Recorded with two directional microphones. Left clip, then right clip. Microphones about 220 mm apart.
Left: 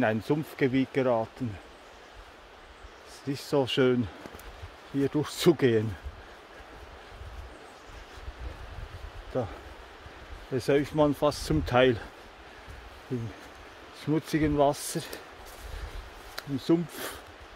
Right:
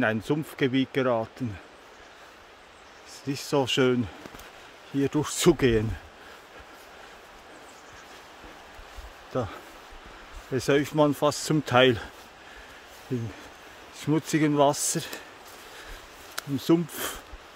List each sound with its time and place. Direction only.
0.0 s speech: 10° right (ahead or behind)
3.3 s speech: 15° right (ahead or behind)
9.3 s speech: 20° right (ahead or behind)
13.9 s speech: 25° right (ahead or behind)
16.3 s speech: 25° right (ahead or behind)